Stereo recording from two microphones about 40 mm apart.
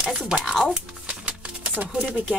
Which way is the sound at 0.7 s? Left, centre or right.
Right.